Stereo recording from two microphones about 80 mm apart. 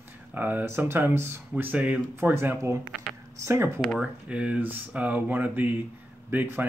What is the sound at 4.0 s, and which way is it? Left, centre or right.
Speech, centre.